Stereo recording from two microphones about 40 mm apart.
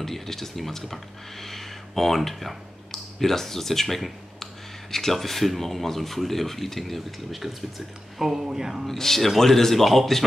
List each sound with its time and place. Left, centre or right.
0.0 s speech: centre
8.8 s a man's voice: centre